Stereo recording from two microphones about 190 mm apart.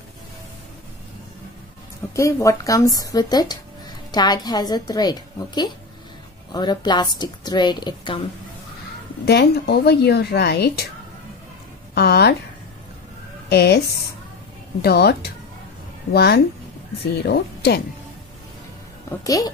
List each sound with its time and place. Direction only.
2.1 s a woman's voice: 15° left (ahead or behind)
9.2 s a woman's voice: 60° left (ahead or behind)
11.9 s a woman's voice: 60° left (ahead or behind)
13.5 s a woman's voice: 60° left (ahead or behind)
19.0 s speech: 20° left (ahead or behind)